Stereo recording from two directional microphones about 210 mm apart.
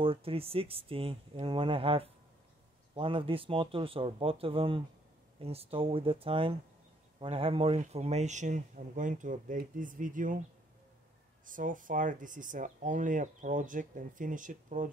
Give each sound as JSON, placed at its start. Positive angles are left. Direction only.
{"t": 0.0, "sound": "speech", "side_deg": -25}
{"t": 11.4, "sound": "speech", "side_deg": -40}